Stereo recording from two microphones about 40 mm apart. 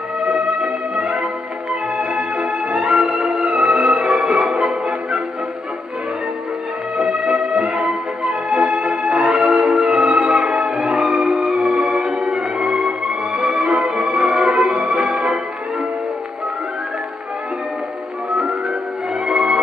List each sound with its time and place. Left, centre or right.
0.2 s music: centre; by 3.4 s right
3.4 s music: centre
7.0 s music: centre
10.4 s music: right
11.3 s music: centre
11.6 s music: right
12.1 s music: centre
13.5 s music: right